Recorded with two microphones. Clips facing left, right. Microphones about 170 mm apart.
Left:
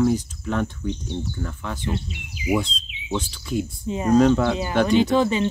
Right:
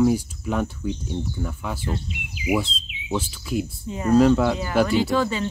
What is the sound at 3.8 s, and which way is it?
Speech, 20° left (ahead or behind).